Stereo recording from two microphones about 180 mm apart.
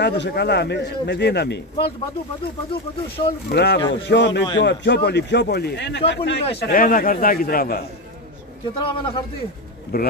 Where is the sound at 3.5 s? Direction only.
65° left (ahead or behind).